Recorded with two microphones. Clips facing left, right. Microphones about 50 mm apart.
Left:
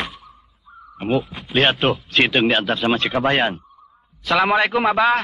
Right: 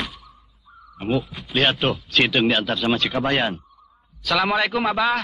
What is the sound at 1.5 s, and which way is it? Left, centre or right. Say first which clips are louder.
Speech: left 3 dB; centre.